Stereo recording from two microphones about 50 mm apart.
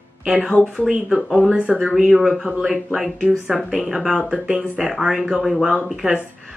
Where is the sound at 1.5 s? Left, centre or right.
Right.